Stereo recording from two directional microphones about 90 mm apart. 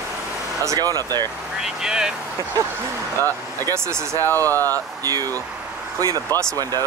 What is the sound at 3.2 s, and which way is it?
Speech, 40° right (ahead or behind).